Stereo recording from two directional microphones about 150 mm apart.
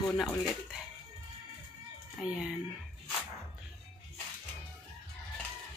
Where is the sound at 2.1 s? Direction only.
5° right (ahead or behind).